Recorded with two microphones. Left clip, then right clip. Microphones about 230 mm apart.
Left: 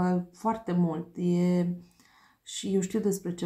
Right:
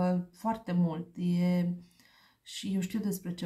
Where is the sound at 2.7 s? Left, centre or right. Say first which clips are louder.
Left 10 dB; right.